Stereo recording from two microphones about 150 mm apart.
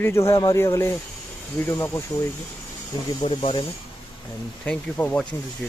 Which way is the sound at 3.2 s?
40° left (ahead or behind).